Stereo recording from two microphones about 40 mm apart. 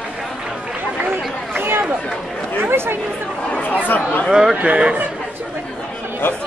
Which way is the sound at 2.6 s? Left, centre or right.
Right.